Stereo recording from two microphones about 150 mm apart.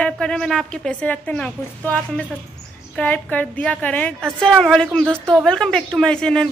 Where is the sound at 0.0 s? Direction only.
5° left (ahead or behind).